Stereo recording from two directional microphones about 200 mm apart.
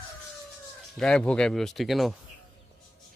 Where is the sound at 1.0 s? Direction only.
5° left (ahead or behind).